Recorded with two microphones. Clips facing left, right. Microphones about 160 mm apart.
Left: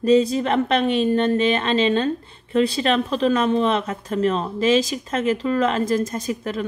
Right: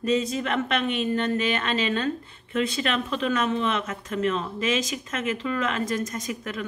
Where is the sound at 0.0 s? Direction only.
35° left (ahead or behind).